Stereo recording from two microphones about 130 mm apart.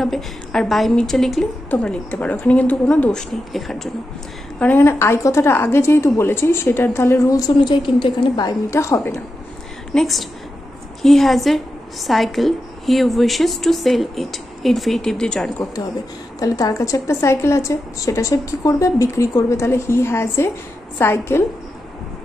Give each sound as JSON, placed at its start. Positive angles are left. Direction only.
{"t": 0.0, "sound": "a woman's voice", "side_deg": 5}
{"t": 1.7, "sound": "speech", "side_deg": 10}
{"t": 4.6, "sound": "speech", "side_deg": 15}
{"t": 9.9, "sound": "a woman's voice", "side_deg": 0}
{"t": 16.3, "sound": "speech", "side_deg": 25}